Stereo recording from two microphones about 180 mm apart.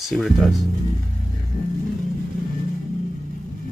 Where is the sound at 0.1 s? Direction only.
5° left (ahead or behind).